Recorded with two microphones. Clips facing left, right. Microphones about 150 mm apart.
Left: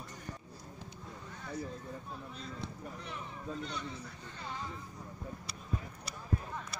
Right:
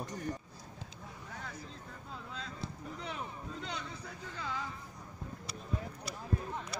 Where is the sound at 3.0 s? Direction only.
90° right.